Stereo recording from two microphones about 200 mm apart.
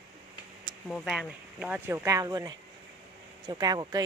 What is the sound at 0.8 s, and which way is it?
Speech, centre (ahead or behind).